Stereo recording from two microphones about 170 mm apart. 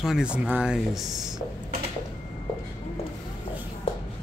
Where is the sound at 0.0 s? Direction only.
5° right (ahead or behind).